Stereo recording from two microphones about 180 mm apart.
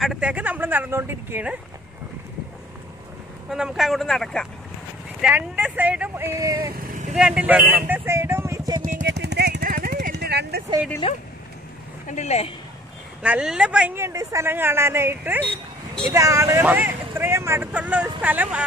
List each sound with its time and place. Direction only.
0.0 s speech: 5° right (ahead or behind)
3.4 s speech: 5° right (ahead or behind)
6.7 s vehicle: 50° right (ahead or behind)
7.2 s speech: 5° right (ahead or behind)
8.8 s vehicle: 50° right (ahead or behind)
11.0 s a woman's voice: 30° left (ahead or behind)
13.2 s speech: 5° right (ahead or behind)